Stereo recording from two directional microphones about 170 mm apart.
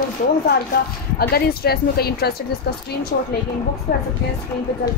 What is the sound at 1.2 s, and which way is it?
A woman's voice, 65° left (ahead or behind).